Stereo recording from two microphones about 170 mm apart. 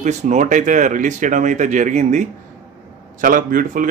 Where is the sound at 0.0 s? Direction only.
45° right (ahead or behind).